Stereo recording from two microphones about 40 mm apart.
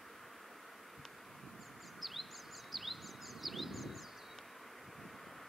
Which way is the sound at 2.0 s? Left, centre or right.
Centre.